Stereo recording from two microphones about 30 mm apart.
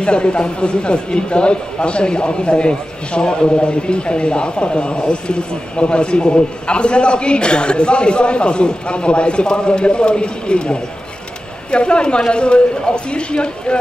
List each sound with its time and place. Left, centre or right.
0.0 s a man's voice: left